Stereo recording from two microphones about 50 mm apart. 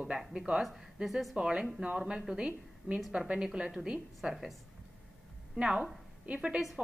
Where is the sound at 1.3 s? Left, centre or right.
Centre.